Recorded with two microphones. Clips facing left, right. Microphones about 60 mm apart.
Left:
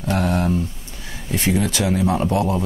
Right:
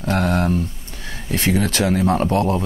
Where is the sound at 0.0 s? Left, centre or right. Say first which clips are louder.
Right 1 dB; right.